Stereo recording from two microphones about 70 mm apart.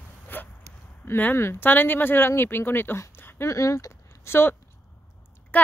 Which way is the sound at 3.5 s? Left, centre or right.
Left.